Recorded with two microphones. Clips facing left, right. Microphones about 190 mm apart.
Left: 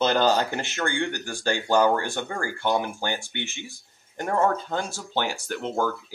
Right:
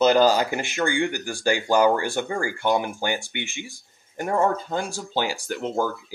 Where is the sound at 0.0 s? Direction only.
5° right (ahead or behind).